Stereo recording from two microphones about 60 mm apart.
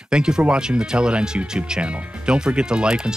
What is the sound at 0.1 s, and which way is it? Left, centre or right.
Speech, centre.